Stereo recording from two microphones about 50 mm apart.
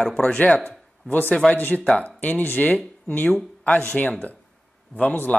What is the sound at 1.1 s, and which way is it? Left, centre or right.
Speech, left.